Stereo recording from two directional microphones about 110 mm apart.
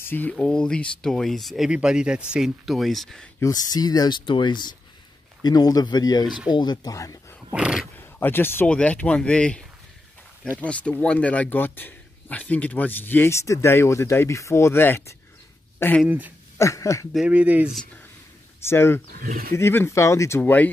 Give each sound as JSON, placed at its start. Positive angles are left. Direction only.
{"t": 0.0, "sound": "speech", "side_deg": 20}
{"t": 0.3, "sound": "speech", "side_deg": 5}
{"t": 3.3, "sound": "speech", "side_deg": 35}
{"t": 7.5, "sound": "speech", "side_deg": -10}
{"t": 8.0, "sound": "speech", "side_deg": 20}
{"t": 16.1, "sound": "speech", "side_deg": -15}
{"t": 16.5, "sound": "speech", "side_deg": 30}
{"t": 17.1, "sound": "speech", "side_deg": -10}
{"t": 18.7, "sound": "speech", "side_deg": 20}